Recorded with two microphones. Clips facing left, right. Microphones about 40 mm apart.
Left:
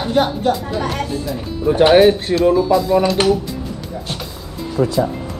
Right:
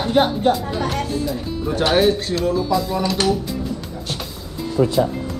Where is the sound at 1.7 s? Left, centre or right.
Left.